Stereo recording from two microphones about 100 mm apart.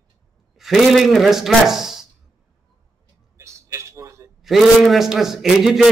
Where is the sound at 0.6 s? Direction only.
Centre (ahead or behind).